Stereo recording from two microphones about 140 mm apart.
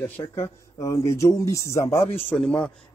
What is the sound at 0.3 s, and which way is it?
Speech, 20° left (ahead or behind).